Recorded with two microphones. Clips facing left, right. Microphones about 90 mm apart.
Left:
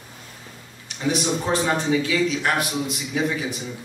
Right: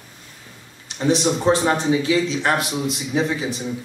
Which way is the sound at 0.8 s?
30° right (ahead or behind).